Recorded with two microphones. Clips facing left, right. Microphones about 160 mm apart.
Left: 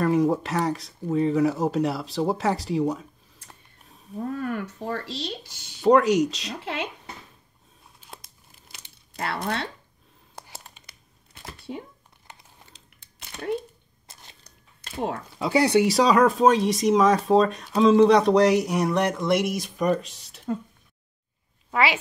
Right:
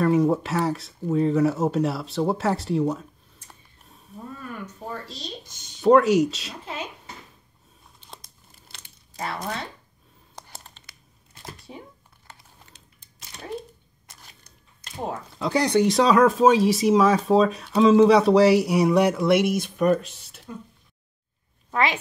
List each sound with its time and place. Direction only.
0.0 s speech: centre (ahead or behind)
4.2 s speech: 70° left (ahead or behind)
5.8 s speech: centre (ahead or behind)
6.5 s speech: 75° left (ahead or behind)
8.0 s crumpling: 5° left (ahead or behind)
9.2 s speech: 70° left (ahead or behind)
10.3 s crumpling: 10° left (ahead or behind)
12.3 s typing: 15° left (ahead or behind)
13.0 s a sound: 65° left (ahead or behind)
14.1 s biting: 25° left (ahead or behind)
14.4 s biting: 70° left (ahead or behind)
15.3 s speech: 5° left (ahead or behind)